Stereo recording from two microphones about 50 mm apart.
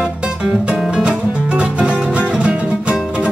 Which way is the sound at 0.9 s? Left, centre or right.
Right.